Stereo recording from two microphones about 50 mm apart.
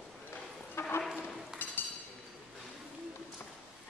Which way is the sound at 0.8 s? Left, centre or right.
Left.